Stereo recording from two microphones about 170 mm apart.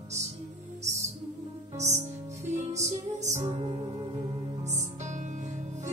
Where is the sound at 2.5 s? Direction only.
45° right (ahead or behind).